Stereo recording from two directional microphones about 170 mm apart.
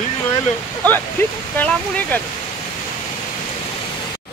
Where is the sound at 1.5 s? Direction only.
10° left (ahead or behind).